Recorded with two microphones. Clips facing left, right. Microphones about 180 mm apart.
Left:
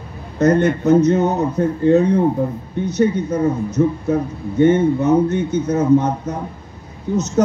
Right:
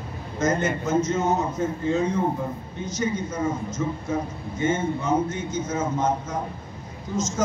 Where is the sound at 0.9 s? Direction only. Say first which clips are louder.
Left 9 dB; 65° left (ahead or behind).